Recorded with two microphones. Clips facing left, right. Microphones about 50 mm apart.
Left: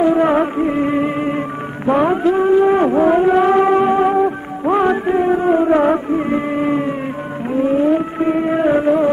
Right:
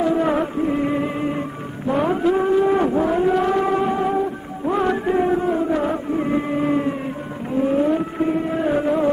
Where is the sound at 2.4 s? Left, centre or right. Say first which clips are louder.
Left 5 dB; left.